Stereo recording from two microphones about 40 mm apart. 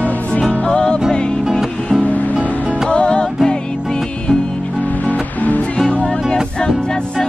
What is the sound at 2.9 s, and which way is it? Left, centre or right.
Music, left.